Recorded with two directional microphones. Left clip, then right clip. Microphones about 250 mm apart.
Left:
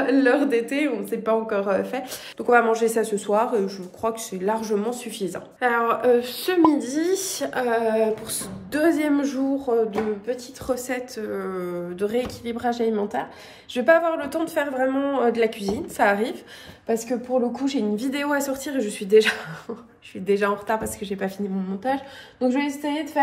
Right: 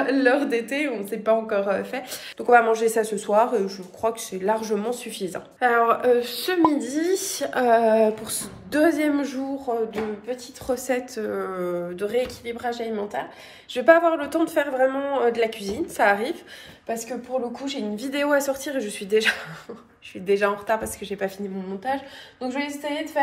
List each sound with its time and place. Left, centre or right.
0.0 s a woman's voice: centre
17.5 s a woman's voice: centre